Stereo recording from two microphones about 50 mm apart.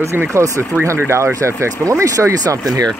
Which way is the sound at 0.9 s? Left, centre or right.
Right.